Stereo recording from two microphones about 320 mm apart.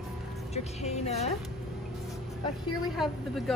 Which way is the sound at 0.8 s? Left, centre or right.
Centre.